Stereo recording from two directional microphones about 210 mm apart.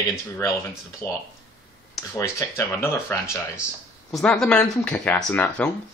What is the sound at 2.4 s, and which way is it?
Speech, 15° left (ahead or behind).